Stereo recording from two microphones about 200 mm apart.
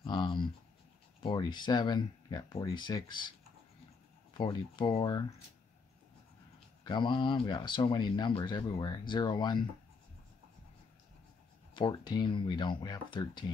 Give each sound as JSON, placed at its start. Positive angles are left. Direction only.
{"t": 0.0, "sound": "writing", "side_deg": 25}
{"t": 1.2, "sound": "speech", "side_deg": 20}
{"t": 6.8, "sound": "speech", "side_deg": 25}
{"t": 11.7, "sound": "speech", "side_deg": 25}